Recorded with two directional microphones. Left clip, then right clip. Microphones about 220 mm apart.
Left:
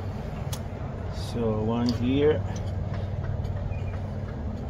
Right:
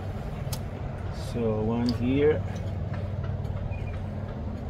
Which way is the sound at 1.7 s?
5° right (ahead or behind).